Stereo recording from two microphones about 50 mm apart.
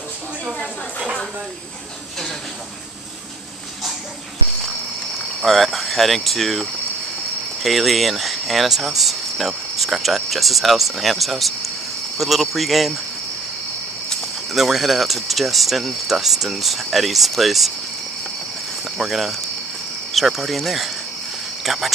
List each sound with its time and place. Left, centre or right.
5.4 s speech: centre
14.5 s speech: centre
18.9 s speech: centre